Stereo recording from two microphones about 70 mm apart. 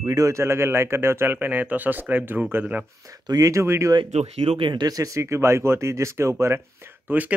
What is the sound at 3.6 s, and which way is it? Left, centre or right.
Speech, right.